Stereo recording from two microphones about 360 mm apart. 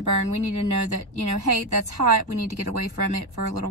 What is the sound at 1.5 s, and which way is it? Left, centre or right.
Speech, right.